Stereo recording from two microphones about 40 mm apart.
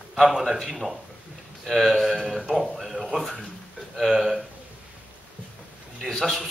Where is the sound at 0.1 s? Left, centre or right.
Centre.